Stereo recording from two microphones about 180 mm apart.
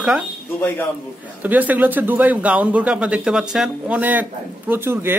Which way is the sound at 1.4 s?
10° right (ahead or behind).